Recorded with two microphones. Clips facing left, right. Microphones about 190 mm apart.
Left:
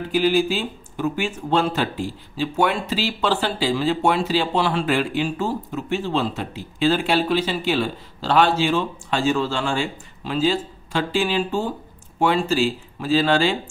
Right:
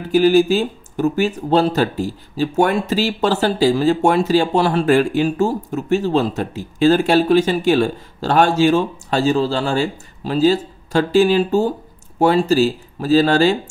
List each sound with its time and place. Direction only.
0.1 s speech: 45° right (ahead or behind)